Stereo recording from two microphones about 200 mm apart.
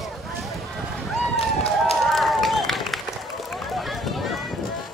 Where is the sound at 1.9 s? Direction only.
Centre (ahead or behind).